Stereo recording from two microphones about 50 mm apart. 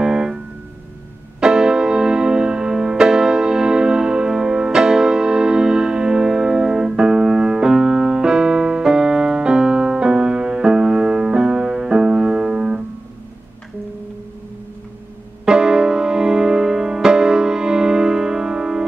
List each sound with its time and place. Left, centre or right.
0.0 s keyboard: centre
1.4 s music: centre
15.4 s music: centre